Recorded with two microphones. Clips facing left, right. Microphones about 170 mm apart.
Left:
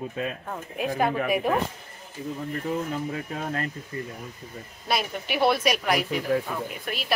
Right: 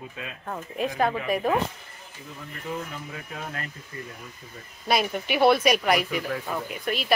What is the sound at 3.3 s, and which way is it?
Speech, 35° left (ahead or behind).